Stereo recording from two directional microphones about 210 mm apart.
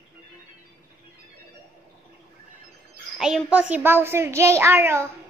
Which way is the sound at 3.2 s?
5° right (ahead or behind).